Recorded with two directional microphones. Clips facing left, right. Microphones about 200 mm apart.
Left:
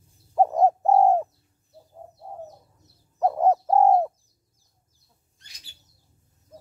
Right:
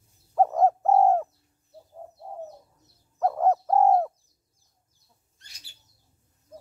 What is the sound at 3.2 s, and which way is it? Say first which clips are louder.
Bird: left 2 dB; 20° left (ahead or behind).